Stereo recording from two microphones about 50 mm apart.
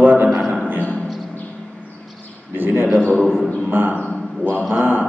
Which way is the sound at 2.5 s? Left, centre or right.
Right.